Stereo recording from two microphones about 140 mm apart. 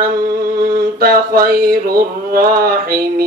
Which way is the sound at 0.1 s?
90° right.